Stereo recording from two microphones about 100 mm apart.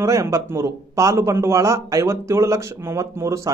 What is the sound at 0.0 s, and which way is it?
Speech, 30° right (ahead or behind).